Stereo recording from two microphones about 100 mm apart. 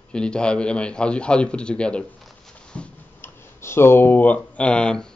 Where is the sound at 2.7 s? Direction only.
10° left (ahead or behind).